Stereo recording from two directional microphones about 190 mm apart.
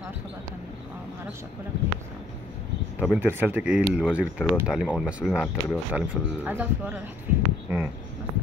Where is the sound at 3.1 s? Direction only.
10° right (ahead or behind).